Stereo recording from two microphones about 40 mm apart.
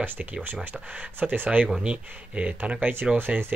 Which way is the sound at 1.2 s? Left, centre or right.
Right.